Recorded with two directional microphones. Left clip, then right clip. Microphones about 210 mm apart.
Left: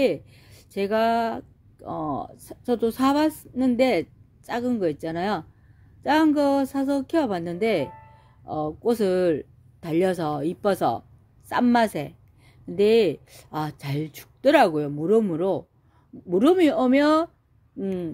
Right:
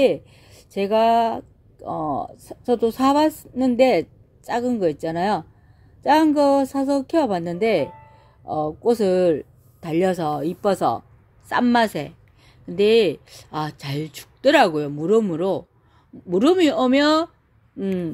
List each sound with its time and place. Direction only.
0.0 s a woman's voice: centre (ahead or behind)